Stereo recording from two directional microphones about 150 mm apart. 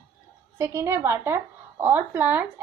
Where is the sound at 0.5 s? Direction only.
20° right (ahead or behind).